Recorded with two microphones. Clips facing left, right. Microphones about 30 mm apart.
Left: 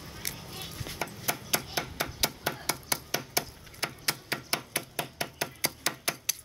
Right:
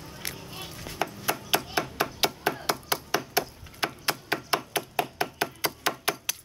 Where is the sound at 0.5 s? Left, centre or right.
Centre.